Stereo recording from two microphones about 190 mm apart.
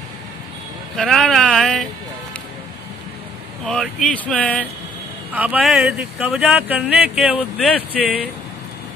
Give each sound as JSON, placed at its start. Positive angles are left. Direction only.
{"t": 0.9, "sound": "speech", "side_deg": 0}
{"t": 3.6, "sound": "speech", "side_deg": 5}
{"t": 5.3, "sound": "speech", "side_deg": -10}
{"t": 7.5, "sound": "speech", "side_deg": 5}